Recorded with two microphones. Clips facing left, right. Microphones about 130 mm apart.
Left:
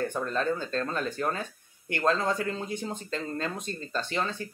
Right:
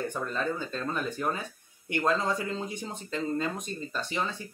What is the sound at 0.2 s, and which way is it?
Speech, 10° right (ahead or behind).